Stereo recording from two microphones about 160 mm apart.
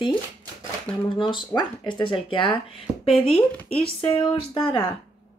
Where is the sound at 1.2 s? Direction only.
30° left (ahead or behind).